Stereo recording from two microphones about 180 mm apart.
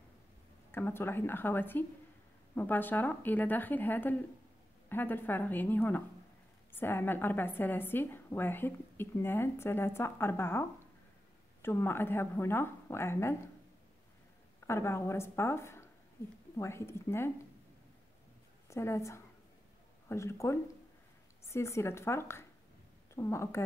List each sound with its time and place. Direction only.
0.7 s a woman's voice: 10° left (ahead or behind)
14.7 s a woman's voice: 15° left (ahead or behind)
18.7 s a woman's voice: 15° left (ahead or behind)